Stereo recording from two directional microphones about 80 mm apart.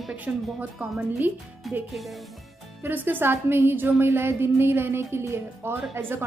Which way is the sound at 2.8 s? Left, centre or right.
Right.